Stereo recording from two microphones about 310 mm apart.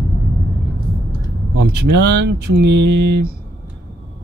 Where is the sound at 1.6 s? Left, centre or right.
Right.